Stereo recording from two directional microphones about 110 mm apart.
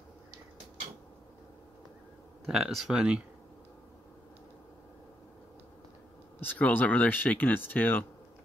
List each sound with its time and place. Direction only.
2.4 s speech: 5° right (ahead or behind)
6.4 s speech: 15° left (ahead or behind)